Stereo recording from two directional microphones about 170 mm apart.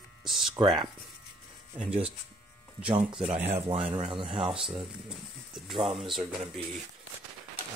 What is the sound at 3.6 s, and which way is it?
Speech, 30° right (ahead or behind).